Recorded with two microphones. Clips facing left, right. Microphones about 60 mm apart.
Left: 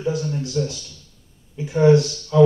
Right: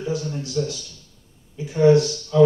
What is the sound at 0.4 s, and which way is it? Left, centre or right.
Speech, left.